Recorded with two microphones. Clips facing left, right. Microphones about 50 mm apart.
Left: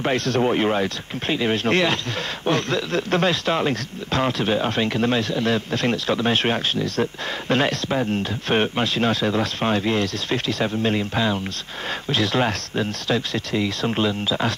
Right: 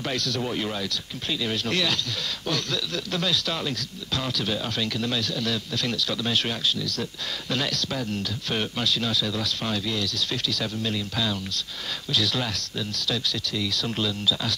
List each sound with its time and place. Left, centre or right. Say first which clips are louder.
0.0 s speech: left 8 dB; left